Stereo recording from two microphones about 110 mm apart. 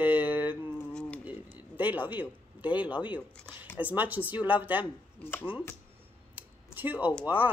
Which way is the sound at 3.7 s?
15° right (ahead or behind).